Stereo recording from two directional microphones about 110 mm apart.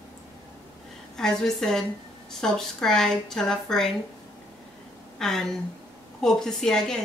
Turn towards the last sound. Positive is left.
turn(degrees=5)  # may be behind; listen again after turning